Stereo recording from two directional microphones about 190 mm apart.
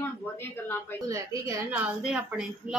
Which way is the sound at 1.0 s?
15° right (ahead or behind).